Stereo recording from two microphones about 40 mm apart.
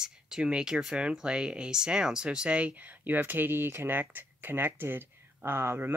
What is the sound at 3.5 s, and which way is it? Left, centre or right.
Speech, right.